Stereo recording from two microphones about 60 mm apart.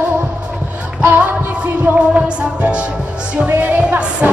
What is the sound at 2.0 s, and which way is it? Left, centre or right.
Music, centre.